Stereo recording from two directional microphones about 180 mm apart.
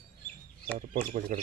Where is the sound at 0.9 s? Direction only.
50° right (ahead or behind).